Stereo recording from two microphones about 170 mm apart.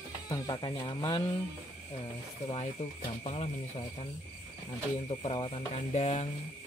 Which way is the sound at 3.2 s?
40° left (ahead or behind).